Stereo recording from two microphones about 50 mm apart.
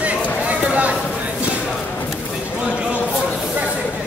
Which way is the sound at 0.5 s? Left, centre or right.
Right.